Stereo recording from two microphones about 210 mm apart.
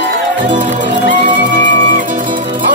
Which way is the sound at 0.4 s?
35° right (ahead or behind).